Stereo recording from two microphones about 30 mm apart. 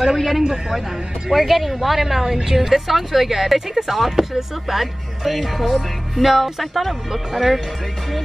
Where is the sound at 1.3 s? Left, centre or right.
Centre.